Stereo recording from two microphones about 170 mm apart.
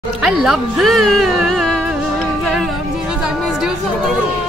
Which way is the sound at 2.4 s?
Centre (ahead or behind).